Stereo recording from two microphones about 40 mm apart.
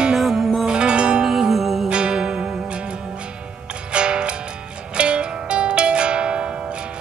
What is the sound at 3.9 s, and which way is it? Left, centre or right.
Music, right.